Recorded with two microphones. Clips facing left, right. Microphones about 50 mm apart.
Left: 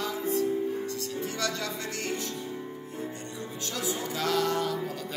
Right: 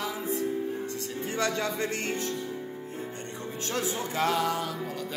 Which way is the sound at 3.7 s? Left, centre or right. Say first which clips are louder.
Right 2 dB; right.